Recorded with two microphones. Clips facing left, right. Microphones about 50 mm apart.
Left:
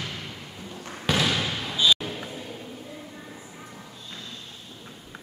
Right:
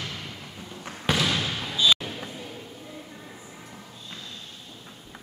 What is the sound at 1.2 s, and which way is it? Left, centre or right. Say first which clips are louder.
Basketball bounce: left 1 dB; centre.